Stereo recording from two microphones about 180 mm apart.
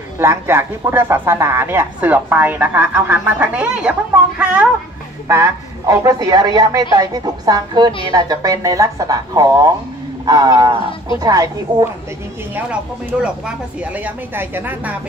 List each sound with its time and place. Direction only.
0.2 s speech: 15° right (ahead or behind)
5.3 s a woman's voice: 15° right (ahead or behind)
13.7 s speech: 10° right (ahead or behind)